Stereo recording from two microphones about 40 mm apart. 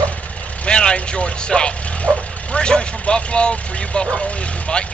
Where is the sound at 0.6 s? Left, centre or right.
Left.